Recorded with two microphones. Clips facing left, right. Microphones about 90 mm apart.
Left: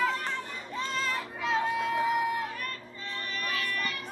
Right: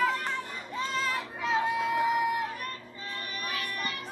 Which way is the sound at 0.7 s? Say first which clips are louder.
Right 1 dB; 5° right (ahead or behind).